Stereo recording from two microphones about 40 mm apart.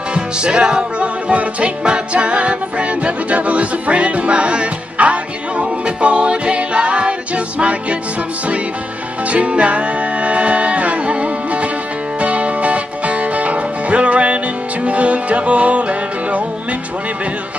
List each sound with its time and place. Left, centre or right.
0.1 s music: right
9.3 s music: right